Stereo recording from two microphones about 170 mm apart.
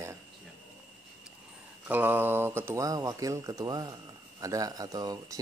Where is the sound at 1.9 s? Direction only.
10° right (ahead or behind).